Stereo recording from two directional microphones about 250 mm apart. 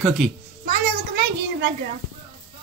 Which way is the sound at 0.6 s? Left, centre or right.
Right.